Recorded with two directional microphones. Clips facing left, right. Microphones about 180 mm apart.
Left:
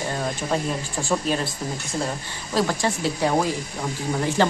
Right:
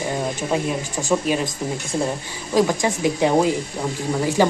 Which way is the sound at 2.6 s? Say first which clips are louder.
Right 4 dB; 15° right (ahead or behind).